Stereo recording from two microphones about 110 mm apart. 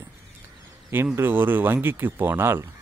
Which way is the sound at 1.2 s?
20° right (ahead or behind).